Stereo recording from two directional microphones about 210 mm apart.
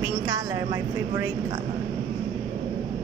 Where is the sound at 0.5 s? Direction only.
10° right (ahead or behind).